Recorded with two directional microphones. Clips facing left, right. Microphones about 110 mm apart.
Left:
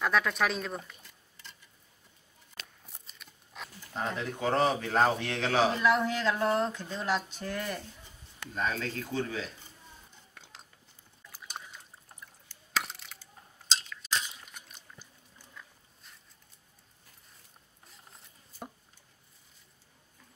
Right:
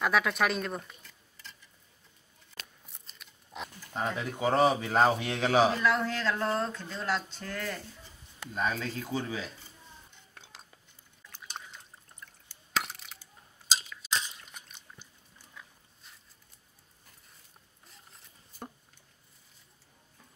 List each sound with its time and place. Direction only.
0.0 s speech: 5° right (ahead or behind)
3.5 s a sound: 20° right (ahead or behind)
4.0 s speech: 10° right (ahead or behind)
5.8 s speech: 15° left (ahead or behind)
8.5 s speech: 10° right (ahead or behind)
11.3 s trickle: 5° left (ahead or behind)
12.7 s a sound: centre (ahead or behind)